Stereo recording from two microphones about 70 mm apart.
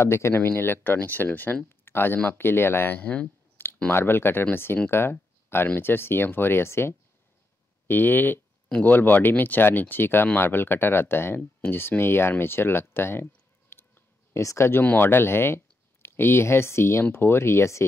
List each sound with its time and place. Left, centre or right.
0.0 s speech: left
3.6 s a sound: left
3.9 s speech: left
14.3 s speech: left
14.7 s speech: left